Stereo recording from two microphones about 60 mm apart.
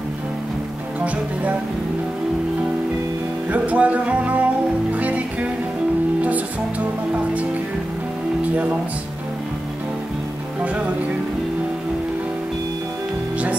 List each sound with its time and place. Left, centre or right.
1.0 s music: right
3.5 s music: right